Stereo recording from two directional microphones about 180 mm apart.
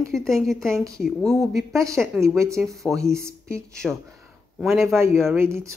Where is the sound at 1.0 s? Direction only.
Centre (ahead or behind).